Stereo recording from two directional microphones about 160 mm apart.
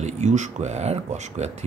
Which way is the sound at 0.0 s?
45° right (ahead or behind).